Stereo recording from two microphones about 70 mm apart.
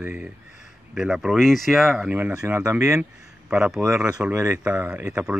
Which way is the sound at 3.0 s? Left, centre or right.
Centre.